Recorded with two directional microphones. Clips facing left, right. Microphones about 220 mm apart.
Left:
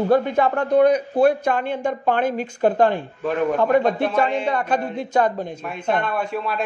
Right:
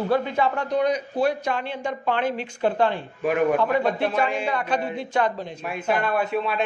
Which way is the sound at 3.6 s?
50° left (ahead or behind).